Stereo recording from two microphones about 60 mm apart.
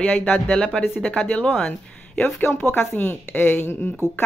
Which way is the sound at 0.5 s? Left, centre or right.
Centre.